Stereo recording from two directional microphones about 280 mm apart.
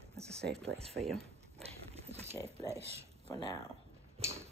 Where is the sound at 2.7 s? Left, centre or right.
Right.